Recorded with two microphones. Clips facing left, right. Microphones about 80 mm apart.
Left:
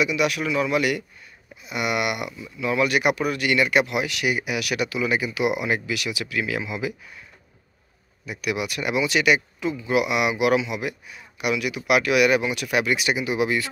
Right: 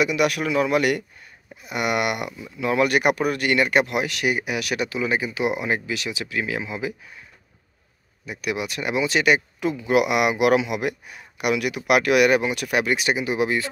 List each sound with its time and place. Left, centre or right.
0.0 s a man's voice: right
8.3 s speech: right
9.6 s a man's voice: right